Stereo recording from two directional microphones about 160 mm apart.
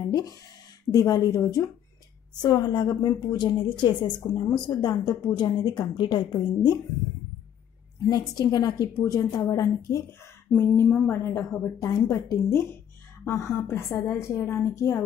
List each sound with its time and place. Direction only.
0.1 s a woman's voice: 25° left (ahead or behind)
8.1 s a woman's voice: 25° left (ahead or behind)